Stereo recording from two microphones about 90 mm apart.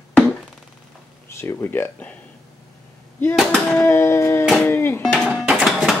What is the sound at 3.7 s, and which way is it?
Speech, 25° left (ahead or behind).